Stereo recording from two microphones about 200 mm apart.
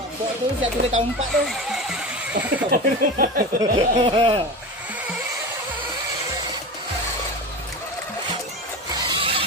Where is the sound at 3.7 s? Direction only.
25° right (ahead or behind).